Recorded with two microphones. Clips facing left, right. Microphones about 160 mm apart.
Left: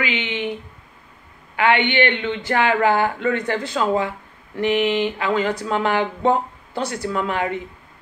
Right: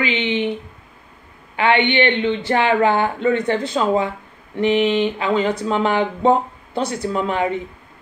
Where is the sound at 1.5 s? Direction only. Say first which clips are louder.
Right 1 dB; 25° right (ahead or behind).